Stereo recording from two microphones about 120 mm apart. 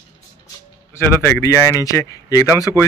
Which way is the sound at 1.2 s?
20° left (ahead or behind).